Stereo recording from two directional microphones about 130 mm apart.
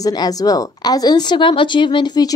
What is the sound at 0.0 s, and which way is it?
Speech, 30° left (ahead or behind).